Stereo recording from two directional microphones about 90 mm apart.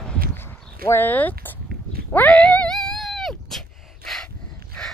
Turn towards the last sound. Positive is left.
turn(degrees=10)  # may be behind; listen again after turning